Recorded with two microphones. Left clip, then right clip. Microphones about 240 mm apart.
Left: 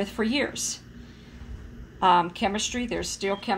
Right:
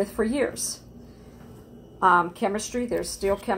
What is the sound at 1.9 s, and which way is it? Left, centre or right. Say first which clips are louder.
Speech: right 1 dB; left.